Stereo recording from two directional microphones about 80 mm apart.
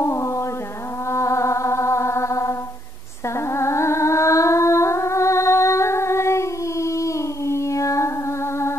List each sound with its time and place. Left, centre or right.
0.0 s music: left